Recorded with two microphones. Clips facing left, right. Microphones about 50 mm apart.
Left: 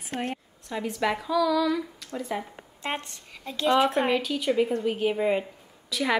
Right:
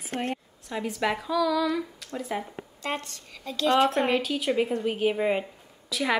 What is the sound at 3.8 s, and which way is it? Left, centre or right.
Speech, centre.